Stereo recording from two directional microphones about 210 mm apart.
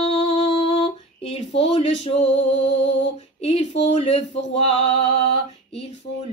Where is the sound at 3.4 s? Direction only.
30° left (ahead or behind).